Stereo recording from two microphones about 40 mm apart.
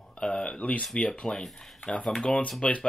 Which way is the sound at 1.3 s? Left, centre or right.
Centre.